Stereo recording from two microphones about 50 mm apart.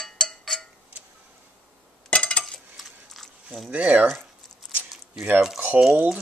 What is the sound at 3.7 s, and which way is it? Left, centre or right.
Speech, right.